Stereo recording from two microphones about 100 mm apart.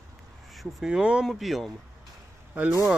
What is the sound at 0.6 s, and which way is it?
Speech, 5° right (ahead or behind).